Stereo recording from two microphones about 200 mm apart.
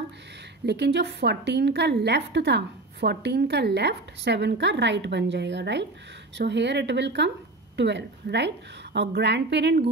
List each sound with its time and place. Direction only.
0.7 s a woman's voice: 60° right (ahead or behind)